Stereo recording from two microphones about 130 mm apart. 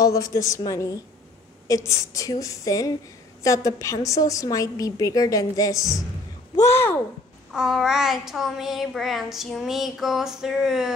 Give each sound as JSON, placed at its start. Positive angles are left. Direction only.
{"t": 0.0, "sound": "a woman's voice", "side_deg": 25}
{"t": 7.5, "sound": "child singing", "side_deg": -5}